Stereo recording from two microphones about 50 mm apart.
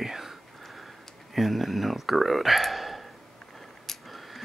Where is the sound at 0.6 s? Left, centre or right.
Centre.